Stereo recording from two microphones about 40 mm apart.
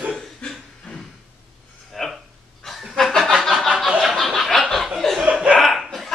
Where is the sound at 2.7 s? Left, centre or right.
Centre.